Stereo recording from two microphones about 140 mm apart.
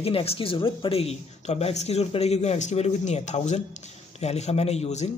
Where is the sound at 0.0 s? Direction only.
45° left (ahead or behind).